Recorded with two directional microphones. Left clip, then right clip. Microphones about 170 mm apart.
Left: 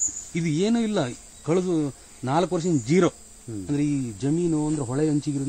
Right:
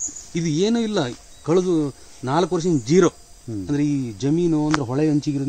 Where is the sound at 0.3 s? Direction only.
40° left (ahead or behind).